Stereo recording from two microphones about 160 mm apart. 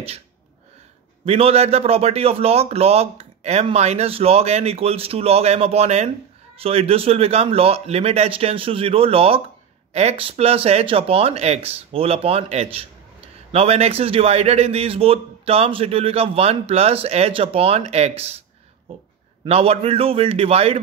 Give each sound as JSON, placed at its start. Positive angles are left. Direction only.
{"t": 1.2, "sound": "speech", "side_deg": -40}
{"t": 19.4, "sound": "speech", "side_deg": -40}